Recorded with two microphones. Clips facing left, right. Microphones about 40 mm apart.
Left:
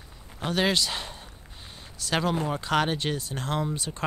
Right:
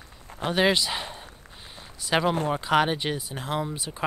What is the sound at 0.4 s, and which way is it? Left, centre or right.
Speech, centre.